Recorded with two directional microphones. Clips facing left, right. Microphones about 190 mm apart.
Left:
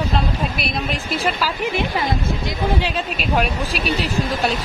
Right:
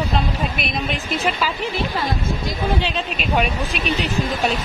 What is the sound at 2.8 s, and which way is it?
Speech, centre (ahead or behind).